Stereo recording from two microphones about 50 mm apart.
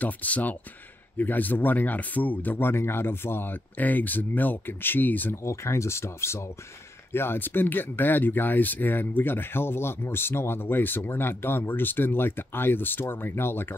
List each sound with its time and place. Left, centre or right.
0.0 s speech: left
5.3 s speech: left
7.1 s speech: left